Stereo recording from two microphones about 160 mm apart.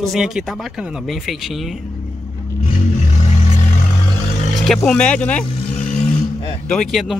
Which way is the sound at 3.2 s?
45° left (ahead or behind).